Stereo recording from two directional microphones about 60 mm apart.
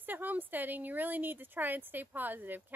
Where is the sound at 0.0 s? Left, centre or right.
Right.